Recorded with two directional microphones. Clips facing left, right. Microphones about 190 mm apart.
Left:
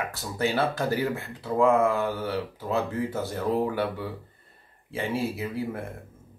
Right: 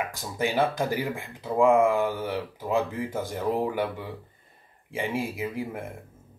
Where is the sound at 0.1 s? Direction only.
15° right (ahead or behind).